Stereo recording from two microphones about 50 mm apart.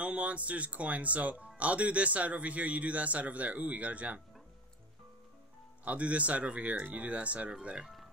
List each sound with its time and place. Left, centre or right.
0.0 s a man's voice: right
5.9 s a man's voice: right
7.8 s music: centre